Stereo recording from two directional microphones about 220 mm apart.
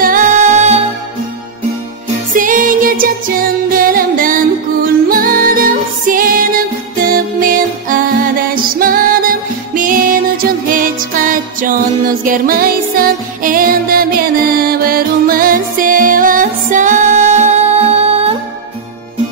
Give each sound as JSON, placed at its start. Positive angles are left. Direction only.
{"t": 0.0, "sound": "music", "side_deg": -35}
{"t": 2.3, "sound": "music", "side_deg": -35}